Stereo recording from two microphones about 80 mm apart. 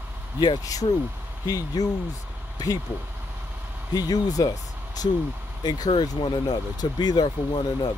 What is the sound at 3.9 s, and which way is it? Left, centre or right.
Speech, left.